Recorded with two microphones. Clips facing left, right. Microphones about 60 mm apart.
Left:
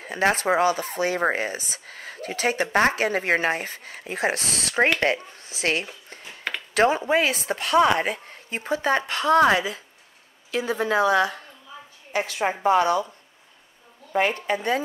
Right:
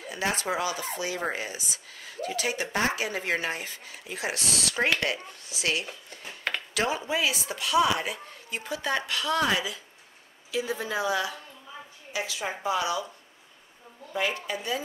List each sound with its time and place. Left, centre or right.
0.0 s speech: left
10.5 s speech: left
14.1 s speech: left